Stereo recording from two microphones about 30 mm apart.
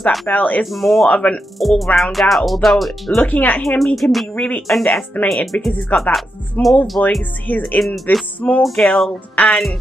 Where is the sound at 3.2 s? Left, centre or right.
Left.